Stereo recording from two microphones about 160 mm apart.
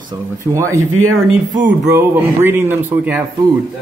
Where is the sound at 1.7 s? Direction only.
10° right (ahead or behind).